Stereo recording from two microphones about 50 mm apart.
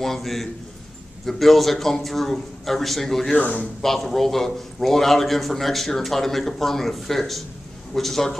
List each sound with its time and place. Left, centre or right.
0.0 s a man's voice: centre
3.3 s a man's voice: left
3.8 s a man's voice: centre